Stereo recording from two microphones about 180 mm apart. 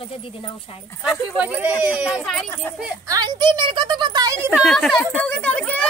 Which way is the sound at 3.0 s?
20° right (ahead or behind).